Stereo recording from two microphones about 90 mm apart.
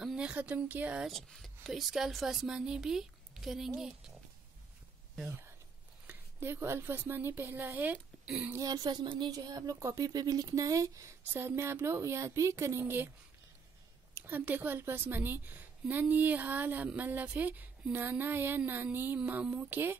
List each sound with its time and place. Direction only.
0.0 s speech: 10° right (ahead or behind)
1.0 s speech: centre (ahead or behind)
5.2 s a woman's voice: 30° right (ahead or behind)
8.5 s speech: 45° right (ahead or behind)
11.3 s a woman's voice: 25° right (ahead or behind)
14.1 s a woman's voice: 20° right (ahead or behind)